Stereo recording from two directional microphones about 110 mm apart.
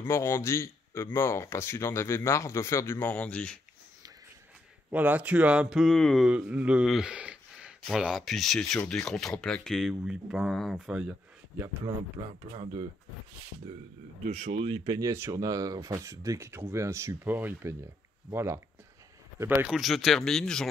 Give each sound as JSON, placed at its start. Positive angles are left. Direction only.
{"t": 0.0, "sound": "speech", "side_deg": 20}
{"t": 4.9, "sound": "speech", "side_deg": -15}
{"t": 5.8, "sound": "speech", "side_deg": 5}
{"t": 6.3, "sound": "speech", "side_deg": -10}
{"t": 15.0, "sound": "speech", "side_deg": -25}
{"t": 19.7, "sound": "speech", "side_deg": 0}